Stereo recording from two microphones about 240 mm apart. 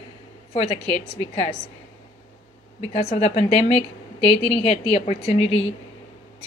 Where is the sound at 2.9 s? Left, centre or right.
Left.